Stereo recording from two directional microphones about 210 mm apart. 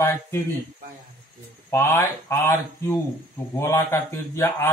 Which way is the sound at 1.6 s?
10° left (ahead or behind).